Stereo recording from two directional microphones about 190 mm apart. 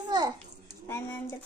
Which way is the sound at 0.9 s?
10° left (ahead or behind).